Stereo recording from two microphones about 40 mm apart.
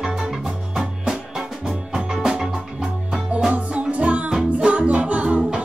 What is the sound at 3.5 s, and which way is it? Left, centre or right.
Music, right.